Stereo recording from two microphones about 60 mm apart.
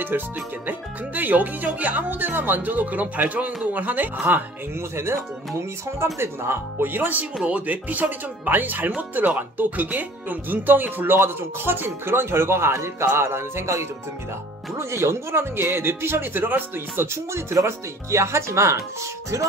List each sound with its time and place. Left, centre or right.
0.1 s speech: right
4.7 s speech: right
6.1 s speech: right